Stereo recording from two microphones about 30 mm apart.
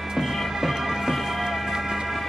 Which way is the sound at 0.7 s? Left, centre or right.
Centre.